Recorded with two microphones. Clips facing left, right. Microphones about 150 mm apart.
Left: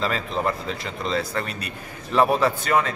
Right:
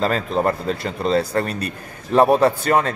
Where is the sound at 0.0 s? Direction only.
40° right (ahead or behind).